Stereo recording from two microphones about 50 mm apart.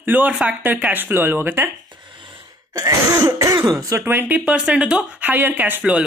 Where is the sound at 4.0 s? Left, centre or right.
Right.